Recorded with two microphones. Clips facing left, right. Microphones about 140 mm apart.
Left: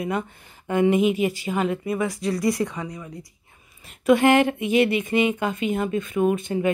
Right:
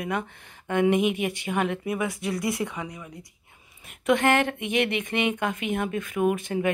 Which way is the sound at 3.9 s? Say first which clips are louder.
Left 5 dB; 5° left (ahead or behind).